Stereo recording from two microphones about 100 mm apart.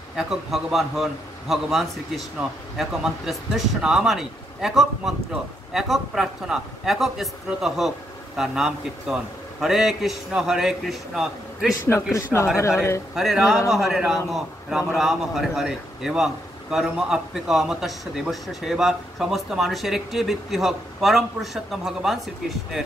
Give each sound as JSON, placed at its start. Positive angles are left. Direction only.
{"t": 0.1, "sound": "a man's voice", "side_deg": -5}
{"t": 11.9, "sound": "speech", "side_deg": 30}
{"t": 13.1, "sound": "a man's voice", "side_deg": 0}